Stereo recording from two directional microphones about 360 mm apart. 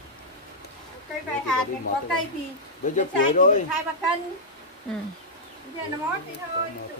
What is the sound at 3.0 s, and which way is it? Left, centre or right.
Speech, left.